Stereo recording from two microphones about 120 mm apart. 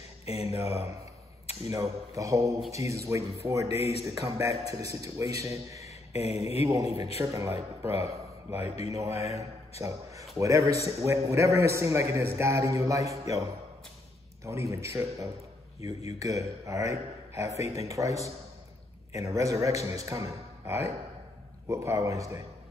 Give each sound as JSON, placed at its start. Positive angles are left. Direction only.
{"t": 0.2, "sound": "a sound", "side_deg": 55}
{"t": 0.5, "sound": "a man's voice", "side_deg": -20}
{"t": 3.7, "sound": "speech", "side_deg": 55}
{"t": 4.0, "sound": "a man's voice", "side_deg": -25}
{"t": 5.9, "sound": "a sound", "side_deg": 55}
{"t": 6.6, "sound": "a man's voice", "side_deg": -25}